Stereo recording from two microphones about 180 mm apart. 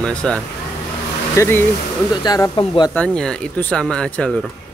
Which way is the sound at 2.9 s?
5° left (ahead or behind).